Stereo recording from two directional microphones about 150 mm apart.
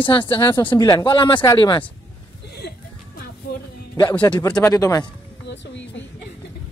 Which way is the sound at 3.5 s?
90° left.